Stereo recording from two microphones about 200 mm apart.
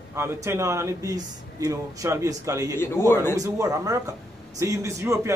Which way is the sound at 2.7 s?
10° left (ahead or behind).